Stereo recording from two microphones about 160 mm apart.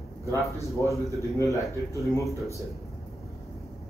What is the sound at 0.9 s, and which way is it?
A man's voice, 20° left (ahead or behind).